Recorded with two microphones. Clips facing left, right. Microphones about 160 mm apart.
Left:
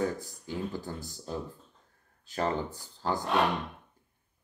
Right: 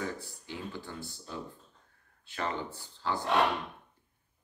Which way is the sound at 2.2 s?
40° left (ahead or behind).